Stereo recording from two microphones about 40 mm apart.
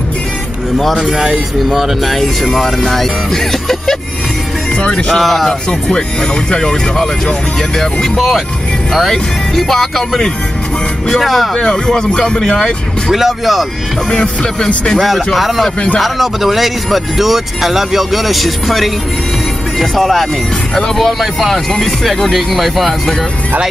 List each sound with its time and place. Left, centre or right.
0.9 s speech: centre
2.0 s speech: centre
4.8 s music: left
5.1 s speech: centre
9.1 s speech: centre
11.5 s speech: centre
13.1 s speech: centre
14.1 s music: left
15.0 s speech: centre